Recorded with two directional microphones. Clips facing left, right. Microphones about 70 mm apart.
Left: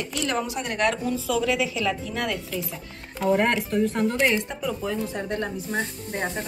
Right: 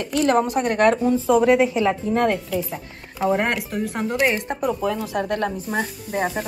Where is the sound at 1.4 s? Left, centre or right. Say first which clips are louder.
Right 8 dB; right.